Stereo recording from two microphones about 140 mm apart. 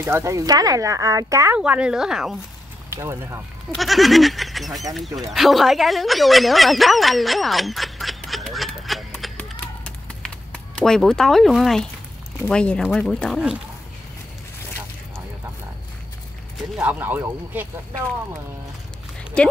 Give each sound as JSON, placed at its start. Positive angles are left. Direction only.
{"t": 0.0, "sound": "speech", "side_deg": -20}
{"t": 1.6, "sound": "speech", "side_deg": -5}
{"t": 2.9, "sound": "speech", "side_deg": -20}
{"t": 3.7, "sound": "speech", "side_deg": 0}
{"t": 9.4, "sound": "run", "side_deg": 5}
{"t": 12.4, "sound": "speech", "side_deg": 5}
{"t": 16.5, "sound": "speech", "side_deg": -5}
{"t": 19.4, "sound": "speech", "side_deg": 10}